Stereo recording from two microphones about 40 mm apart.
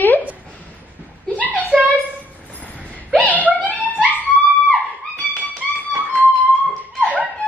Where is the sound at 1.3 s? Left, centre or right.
Left.